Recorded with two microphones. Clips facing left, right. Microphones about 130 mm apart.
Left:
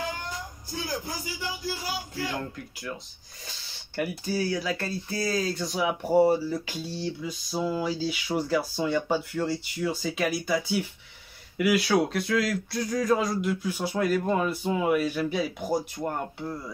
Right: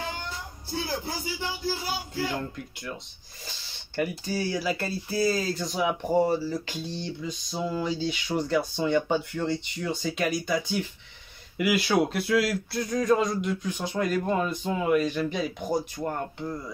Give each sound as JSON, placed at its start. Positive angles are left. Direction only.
{"t": 0.7, "sound": "speech", "side_deg": -30}
{"t": 3.4, "sound": "speech", "side_deg": 0}